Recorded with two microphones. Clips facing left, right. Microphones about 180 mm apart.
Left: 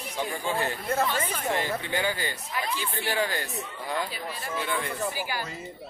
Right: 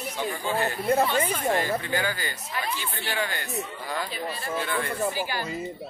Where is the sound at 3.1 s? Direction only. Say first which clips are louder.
Left 2 dB; 35° left (ahead or behind).